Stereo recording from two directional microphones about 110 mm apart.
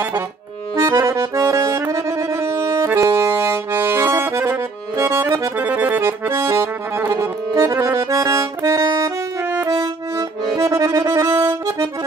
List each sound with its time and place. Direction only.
0.7 s accordion: 25° right (ahead or behind)
5.6 s accordion: 15° right (ahead or behind); by 9.1 s 30° right (ahead or behind)
9.7 s music: 35° right (ahead or behind)
10.6 s accordion: 30° right (ahead or behind)